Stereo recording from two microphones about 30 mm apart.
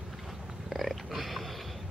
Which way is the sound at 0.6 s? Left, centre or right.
Centre.